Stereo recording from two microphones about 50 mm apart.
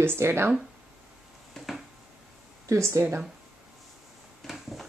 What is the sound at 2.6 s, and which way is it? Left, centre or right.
Speech, right.